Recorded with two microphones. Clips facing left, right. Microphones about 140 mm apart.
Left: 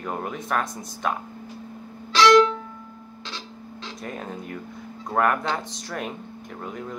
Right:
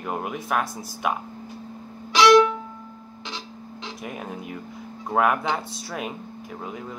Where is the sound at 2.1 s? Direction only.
15° right (ahead or behind).